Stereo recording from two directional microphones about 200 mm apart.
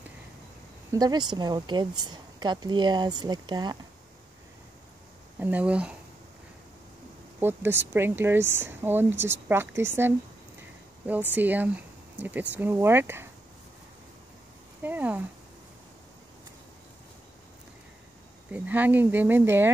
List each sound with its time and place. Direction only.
0.9 s speech: 20° right (ahead or behind)
5.4 s speech: 5° right (ahead or behind)
7.3 s speech: 10° right (ahead or behind)
11.3 s speech: 10° right (ahead or behind)
14.8 s a sound: 10° right (ahead or behind)
18.5 s speech: 10° right (ahead or behind)